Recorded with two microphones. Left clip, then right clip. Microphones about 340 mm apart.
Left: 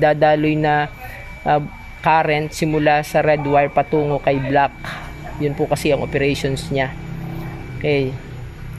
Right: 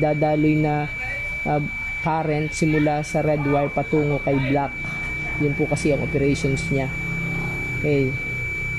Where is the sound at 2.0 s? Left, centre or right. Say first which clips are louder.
Left 9 dB; left.